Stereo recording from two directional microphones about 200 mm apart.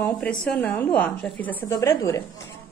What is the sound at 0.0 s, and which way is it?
A woman's voice, 5° left (ahead or behind).